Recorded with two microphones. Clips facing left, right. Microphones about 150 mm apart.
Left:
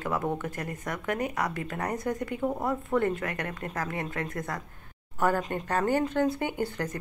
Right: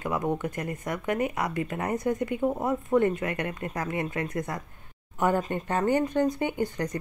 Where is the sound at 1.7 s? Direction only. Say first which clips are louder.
Right 3 dB; 20° right (ahead or behind).